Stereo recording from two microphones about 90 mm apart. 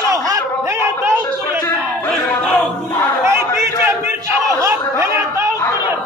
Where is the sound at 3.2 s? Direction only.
35° right (ahead or behind).